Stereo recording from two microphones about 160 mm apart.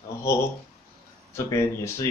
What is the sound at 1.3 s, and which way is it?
Speech, 15° left (ahead or behind).